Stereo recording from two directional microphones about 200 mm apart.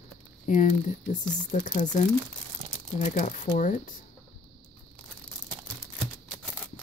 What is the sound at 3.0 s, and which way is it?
Speech, 35° left (ahead or behind).